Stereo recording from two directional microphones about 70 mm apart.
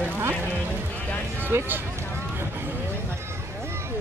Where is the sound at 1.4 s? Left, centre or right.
Right.